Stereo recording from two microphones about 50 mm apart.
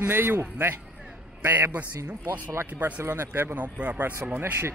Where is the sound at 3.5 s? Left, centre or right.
Right.